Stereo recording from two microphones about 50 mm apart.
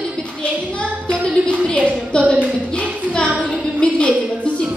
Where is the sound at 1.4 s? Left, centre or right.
Centre.